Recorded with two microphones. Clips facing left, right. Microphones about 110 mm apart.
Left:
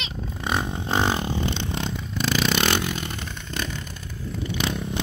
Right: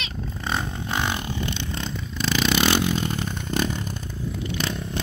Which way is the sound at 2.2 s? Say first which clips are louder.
Right 1 dB; centre (ahead or behind).